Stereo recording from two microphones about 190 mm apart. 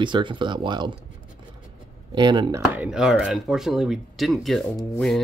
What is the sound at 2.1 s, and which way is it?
Speech, 25° right (ahead or behind).